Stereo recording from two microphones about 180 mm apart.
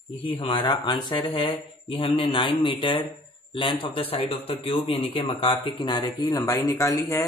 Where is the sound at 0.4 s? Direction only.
25° left (ahead or behind).